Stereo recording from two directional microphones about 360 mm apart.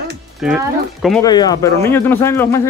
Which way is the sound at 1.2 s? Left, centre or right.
Centre.